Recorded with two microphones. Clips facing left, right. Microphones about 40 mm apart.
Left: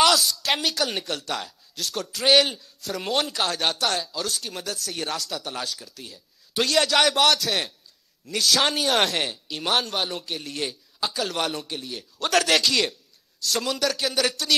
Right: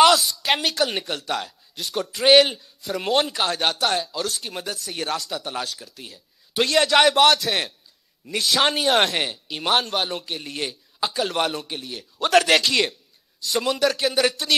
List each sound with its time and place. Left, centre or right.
0.0 s a woman's voice: centre